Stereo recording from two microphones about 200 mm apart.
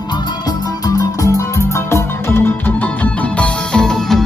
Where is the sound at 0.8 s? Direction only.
15° left (ahead or behind).